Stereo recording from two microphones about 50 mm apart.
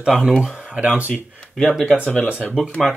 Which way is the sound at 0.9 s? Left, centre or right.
Right.